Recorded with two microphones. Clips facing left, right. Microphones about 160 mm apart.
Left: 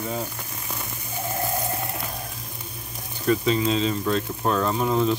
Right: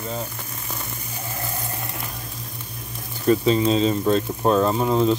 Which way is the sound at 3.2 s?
35° right (ahead or behind).